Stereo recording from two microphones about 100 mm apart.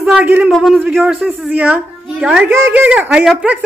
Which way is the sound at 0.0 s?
10° right (ahead or behind).